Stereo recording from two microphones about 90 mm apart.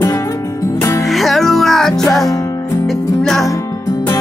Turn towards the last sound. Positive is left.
turn(degrees=5)  # may be behind; listen again after turning